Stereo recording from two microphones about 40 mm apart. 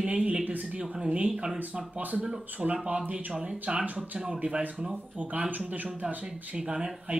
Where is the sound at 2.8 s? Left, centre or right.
Right.